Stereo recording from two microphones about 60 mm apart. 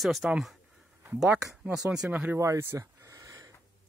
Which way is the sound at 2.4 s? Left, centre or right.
Right.